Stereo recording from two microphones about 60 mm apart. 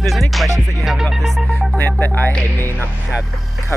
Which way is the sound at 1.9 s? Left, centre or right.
Left.